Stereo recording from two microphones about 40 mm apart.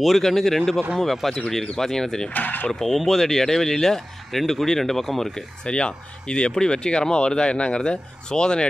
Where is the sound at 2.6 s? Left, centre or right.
Centre.